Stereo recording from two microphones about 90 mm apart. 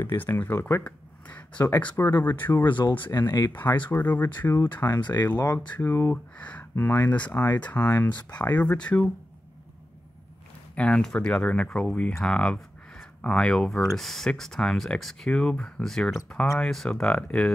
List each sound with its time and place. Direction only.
0.0 s speech: 25° left (ahead or behind)
0.8 s speech: 15° left (ahead or behind)
3.1 s speech: 40° left (ahead or behind)
3.9 s speech: 20° left (ahead or behind)
6.3 s speech: 15° left (ahead or behind)
10.8 s speech: 10° left (ahead or behind)